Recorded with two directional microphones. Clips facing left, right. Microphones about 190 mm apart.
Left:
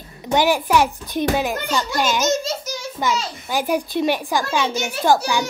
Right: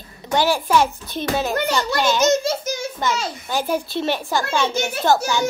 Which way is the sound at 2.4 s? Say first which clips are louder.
Right 4 dB; 55° right (ahead or behind).